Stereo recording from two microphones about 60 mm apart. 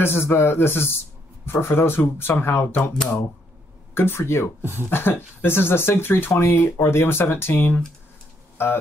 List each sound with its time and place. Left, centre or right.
0.0 s speech: left
3.9 s speech: left